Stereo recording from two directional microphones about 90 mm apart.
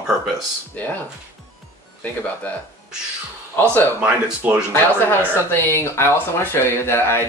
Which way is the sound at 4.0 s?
20° right (ahead or behind).